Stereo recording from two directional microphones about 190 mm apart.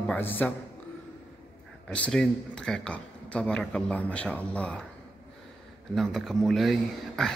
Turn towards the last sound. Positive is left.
turn(degrees=0)  # may be behind; listen again after turning